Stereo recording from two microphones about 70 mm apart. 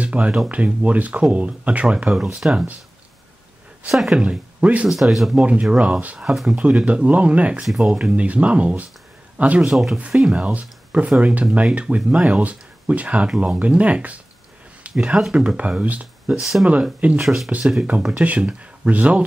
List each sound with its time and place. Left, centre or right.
0.0 s a sound: centre
0.5 s speech: centre
3.9 s speech: centre
4.2 s speech: centre
4.8 s speech: centre
5.4 s speech: centre
6.3 s speech: centre
6.6 s speech: centre
7.6 s speech: centre
9.7 s speech: centre
10.4 s speech: centre
15.3 s speech: centre
17.2 s speech: centre
17.5 s speech: centre